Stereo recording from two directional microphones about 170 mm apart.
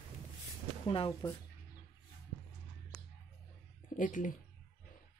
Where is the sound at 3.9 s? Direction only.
50° left (ahead or behind).